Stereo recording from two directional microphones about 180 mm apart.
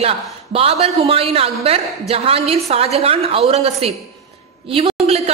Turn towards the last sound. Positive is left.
turn(degrees=-35)  # may be behind; listen again after turning